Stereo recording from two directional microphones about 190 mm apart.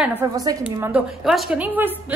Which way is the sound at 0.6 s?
5° right (ahead or behind).